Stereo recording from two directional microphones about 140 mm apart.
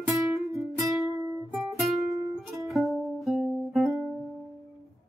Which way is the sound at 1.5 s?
Centre (ahead or behind).